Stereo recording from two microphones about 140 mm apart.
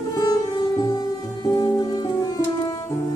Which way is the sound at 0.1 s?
25° left (ahead or behind).